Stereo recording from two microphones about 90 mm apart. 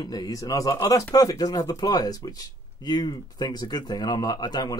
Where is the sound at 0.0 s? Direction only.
45° left (ahead or behind).